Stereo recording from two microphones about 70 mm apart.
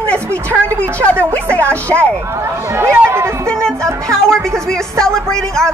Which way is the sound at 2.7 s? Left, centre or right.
Right.